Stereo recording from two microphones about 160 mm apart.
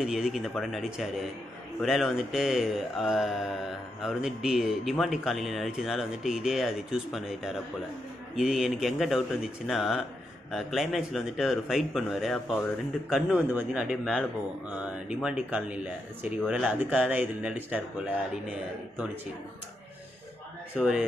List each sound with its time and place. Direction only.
0.0 s mantra: 5° right (ahead or behind)
14.7 s speech: 10° right (ahead or behind)